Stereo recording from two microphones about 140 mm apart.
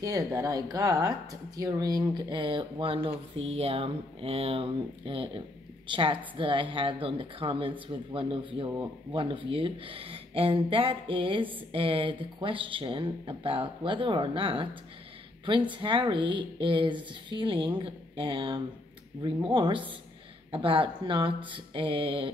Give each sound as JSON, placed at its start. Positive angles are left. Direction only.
{"t": 0.0, "sound": "speech", "side_deg": -25}
{"t": 15.7, "sound": "speech", "side_deg": -35}